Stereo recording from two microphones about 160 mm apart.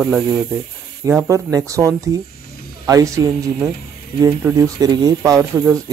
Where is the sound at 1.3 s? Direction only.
20° right (ahead or behind).